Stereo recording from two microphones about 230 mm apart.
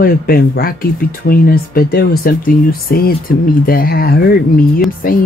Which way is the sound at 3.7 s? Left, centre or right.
Left.